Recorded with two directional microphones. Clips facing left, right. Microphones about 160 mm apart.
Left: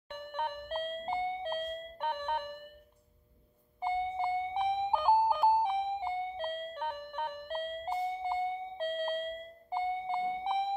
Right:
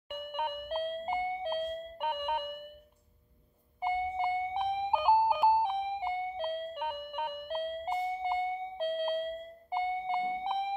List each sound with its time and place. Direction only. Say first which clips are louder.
0.1 s doorbell: right 1 dB; 10° right (ahead or behind)
3.8 s music: right 1 dB; 10° right (ahead or behind)